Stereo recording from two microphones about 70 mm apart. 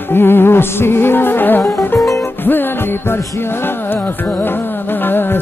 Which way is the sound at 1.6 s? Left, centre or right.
Left.